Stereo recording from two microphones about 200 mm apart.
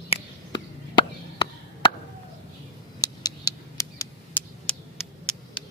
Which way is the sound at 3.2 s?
15° left (ahead or behind).